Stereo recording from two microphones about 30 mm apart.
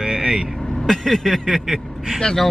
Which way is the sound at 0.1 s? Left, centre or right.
Centre.